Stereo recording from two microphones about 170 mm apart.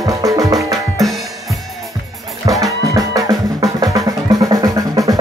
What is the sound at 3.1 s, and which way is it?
Drum, 20° right (ahead or behind).